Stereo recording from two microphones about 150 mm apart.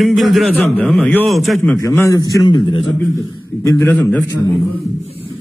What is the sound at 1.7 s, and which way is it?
A man's voice, 20° left (ahead or behind).